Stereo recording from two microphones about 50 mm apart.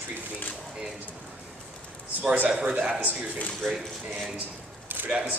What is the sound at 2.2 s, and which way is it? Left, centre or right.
Speech, right.